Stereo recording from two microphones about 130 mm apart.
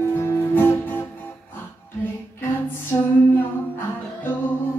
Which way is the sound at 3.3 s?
15° left (ahead or behind).